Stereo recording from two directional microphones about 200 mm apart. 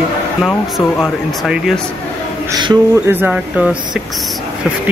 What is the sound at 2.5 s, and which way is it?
Speech, 20° right (ahead or behind).